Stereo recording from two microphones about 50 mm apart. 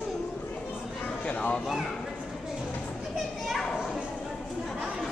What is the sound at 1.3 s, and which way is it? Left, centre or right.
Speech, left.